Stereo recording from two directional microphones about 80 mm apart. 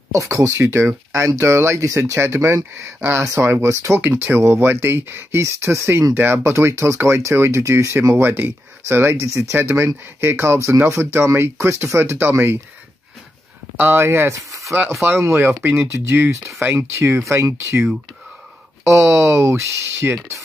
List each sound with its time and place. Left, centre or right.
0.1 s speech: right
3.9 s speech: right
8.2 s speech: right
13.7 s speech: right
18.9 s speech: right
20.2 s speech: right